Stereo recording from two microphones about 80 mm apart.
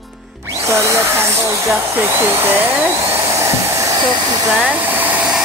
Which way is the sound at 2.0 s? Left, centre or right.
Right.